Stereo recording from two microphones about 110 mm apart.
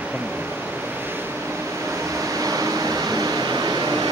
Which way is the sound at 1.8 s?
25° right (ahead or behind).